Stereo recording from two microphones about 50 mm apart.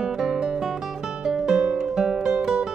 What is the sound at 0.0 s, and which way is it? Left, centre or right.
Music, centre.